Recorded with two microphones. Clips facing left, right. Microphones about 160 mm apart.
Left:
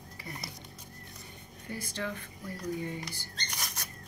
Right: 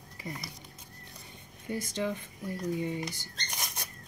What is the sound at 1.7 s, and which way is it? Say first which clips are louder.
Speech: right 5 dB; 20° right (ahead or behind).